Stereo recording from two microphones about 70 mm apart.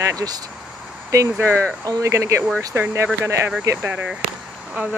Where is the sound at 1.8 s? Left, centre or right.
Right.